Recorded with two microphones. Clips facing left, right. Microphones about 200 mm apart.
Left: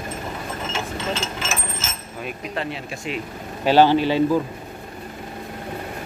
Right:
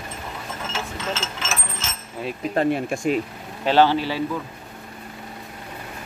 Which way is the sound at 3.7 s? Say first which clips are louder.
Left 3 dB; 15° left (ahead or behind).